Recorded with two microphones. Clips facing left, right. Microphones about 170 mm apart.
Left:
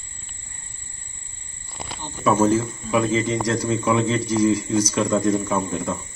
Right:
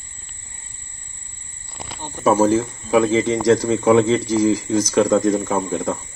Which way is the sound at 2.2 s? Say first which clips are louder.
Right 3 dB; 75° right (ahead or behind).